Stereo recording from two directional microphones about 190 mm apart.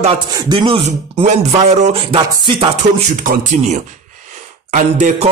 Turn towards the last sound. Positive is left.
turn(degrees=-40)  # may be behind; listen again after turning